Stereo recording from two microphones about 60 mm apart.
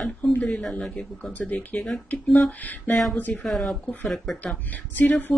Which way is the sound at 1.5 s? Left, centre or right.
Left.